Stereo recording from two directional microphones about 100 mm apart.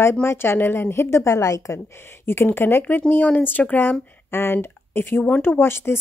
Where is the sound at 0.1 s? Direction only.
25° left (ahead or behind).